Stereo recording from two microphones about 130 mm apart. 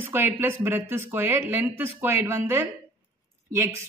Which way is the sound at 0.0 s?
15° right (ahead or behind).